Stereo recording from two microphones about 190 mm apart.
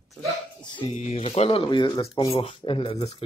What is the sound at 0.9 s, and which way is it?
Speech, 35° left (ahead or behind).